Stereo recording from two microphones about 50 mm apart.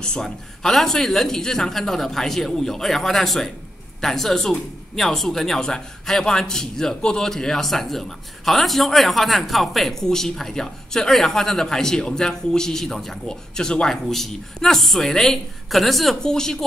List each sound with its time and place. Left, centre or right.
0.0 s speech: centre
16.2 s speech: centre